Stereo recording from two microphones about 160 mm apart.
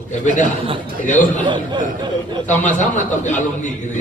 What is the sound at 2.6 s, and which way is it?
A man's voice, 55° left (ahead or behind).